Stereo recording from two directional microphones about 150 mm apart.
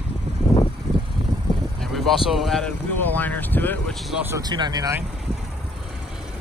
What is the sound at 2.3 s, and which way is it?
Speech, centre (ahead or behind).